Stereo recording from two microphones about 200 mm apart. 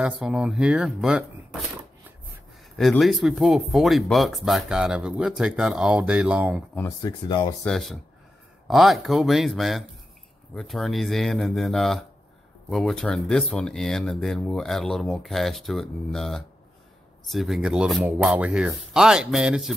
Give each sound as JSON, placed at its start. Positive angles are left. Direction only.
{"t": 0.0, "sound": "speech", "side_deg": -5}
{"t": 2.8, "sound": "speech", "side_deg": 0}
{"t": 7.0, "sound": "speech", "side_deg": 20}
{"t": 7.6, "sound": "speech", "side_deg": 0}